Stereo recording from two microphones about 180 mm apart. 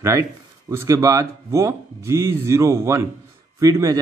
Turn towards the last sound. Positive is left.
turn(degrees=-20)  # may be behind; listen again after turning